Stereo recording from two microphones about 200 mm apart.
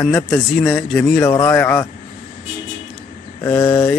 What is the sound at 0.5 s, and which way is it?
Speech, centre (ahead or behind).